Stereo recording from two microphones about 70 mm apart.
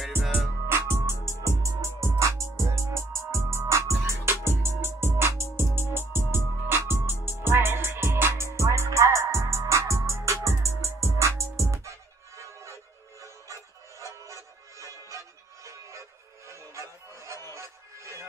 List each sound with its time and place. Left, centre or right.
0.7 s music: right